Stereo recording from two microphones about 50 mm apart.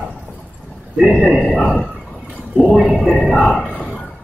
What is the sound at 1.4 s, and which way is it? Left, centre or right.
Speech, left.